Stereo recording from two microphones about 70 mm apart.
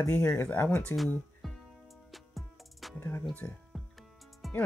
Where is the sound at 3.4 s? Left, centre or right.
Left.